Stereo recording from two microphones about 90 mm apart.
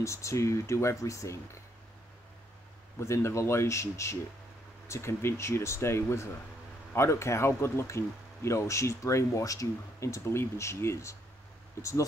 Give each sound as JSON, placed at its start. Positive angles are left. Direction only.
{"t": 0.0, "sound": "speech", "side_deg": 30}
{"t": 3.0, "sound": "speech", "side_deg": 30}